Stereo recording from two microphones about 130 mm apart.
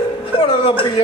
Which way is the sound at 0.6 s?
40° left (ahead or behind).